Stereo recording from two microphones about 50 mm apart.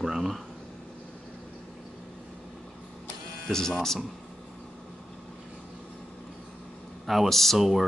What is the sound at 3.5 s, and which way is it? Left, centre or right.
Speech, centre.